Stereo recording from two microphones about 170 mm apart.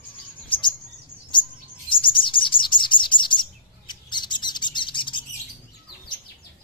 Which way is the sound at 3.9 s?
25° left (ahead or behind).